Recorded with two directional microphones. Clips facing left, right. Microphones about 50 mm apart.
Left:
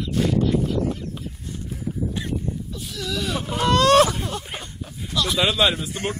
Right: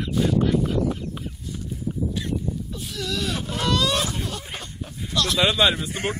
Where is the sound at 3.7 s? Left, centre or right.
Left.